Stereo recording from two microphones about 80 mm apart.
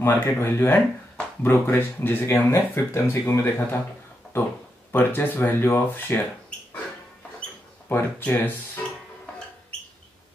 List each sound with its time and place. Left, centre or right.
0.0 s speech: left
4.9 s speech: left
8.2 s speech: left